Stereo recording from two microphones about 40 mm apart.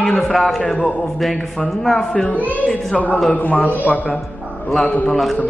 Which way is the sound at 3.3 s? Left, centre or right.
Left.